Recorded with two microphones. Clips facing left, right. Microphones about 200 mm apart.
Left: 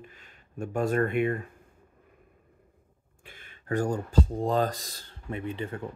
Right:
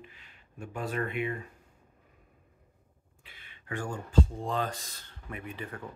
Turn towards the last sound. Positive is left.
turn(degrees=25)  # may be behind; listen again after turning